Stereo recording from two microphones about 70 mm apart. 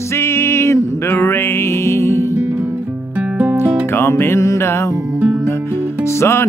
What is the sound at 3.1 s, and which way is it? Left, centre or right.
Music, right.